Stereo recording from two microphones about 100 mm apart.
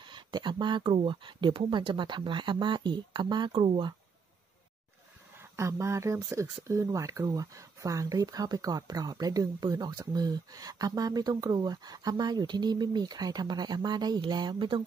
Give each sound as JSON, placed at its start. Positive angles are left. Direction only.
{"t": 0.0, "sound": "speech", "side_deg": -50}
{"t": 5.4, "sound": "speech", "side_deg": -30}